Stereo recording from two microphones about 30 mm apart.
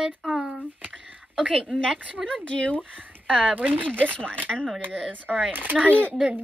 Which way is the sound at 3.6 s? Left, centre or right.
Right.